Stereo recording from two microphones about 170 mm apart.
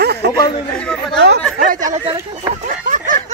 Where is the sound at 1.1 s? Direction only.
80° right.